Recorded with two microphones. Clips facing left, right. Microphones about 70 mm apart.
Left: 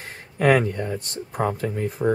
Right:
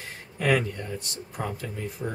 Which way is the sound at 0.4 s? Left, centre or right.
Left.